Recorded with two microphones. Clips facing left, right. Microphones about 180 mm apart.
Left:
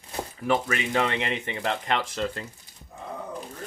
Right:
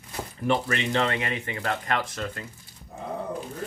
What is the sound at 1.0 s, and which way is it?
Speech, 20° left (ahead or behind).